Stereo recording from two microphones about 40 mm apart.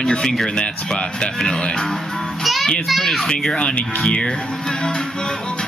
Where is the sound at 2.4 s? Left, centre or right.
Centre.